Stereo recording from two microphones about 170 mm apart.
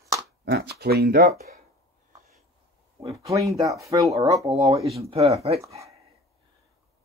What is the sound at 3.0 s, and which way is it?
Speech, 20° right (ahead or behind).